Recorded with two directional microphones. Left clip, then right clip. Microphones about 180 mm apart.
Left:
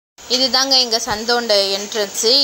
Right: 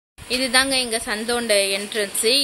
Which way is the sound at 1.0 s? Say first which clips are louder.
Left 5 dB; 30° right (ahead or behind).